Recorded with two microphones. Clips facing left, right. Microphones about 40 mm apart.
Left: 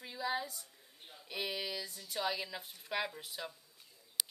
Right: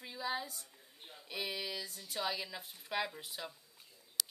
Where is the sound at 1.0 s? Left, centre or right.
Centre.